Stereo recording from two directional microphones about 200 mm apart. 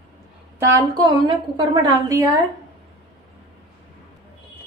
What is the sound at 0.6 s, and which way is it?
A woman's voice, 20° right (ahead or behind).